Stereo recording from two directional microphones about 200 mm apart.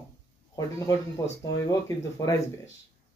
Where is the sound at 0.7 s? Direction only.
15° left (ahead or behind).